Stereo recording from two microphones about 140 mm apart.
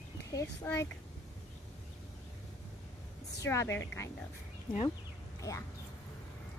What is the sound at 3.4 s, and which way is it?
Speech, 20° left (ahead or behind).